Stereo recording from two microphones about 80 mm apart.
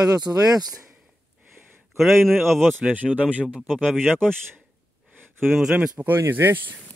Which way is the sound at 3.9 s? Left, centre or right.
Centre.